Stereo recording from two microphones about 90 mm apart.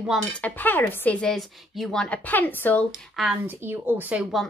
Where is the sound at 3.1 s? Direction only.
5° right (ahead or behind).